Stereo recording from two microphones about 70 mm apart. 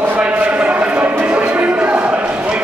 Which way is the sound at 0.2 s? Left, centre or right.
Centre.